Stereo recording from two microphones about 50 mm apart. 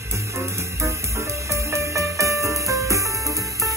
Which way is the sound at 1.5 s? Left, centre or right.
Right.